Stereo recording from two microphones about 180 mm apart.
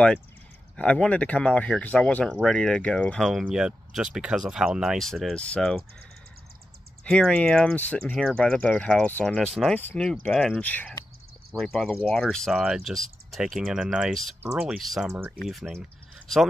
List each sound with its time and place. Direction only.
0.7 s speech: 5° left (ahead or behind)
7.1 s speech: 5° left (ahead or behind)
15.0 s speech: 10° right (ahead or behind)
15.4 s speech: centre (ahead or behind)